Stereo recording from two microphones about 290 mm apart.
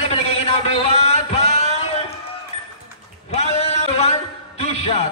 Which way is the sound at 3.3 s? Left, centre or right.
Left.